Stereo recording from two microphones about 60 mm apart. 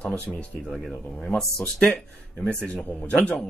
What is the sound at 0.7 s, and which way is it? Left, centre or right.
Speech, centre.